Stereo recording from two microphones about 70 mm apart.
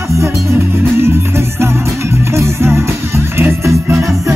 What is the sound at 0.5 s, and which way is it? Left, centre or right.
Music, right.